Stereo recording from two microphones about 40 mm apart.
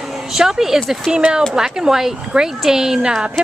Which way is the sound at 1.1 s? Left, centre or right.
Centre.